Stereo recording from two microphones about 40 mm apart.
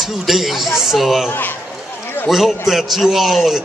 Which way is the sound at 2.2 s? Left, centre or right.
Centre.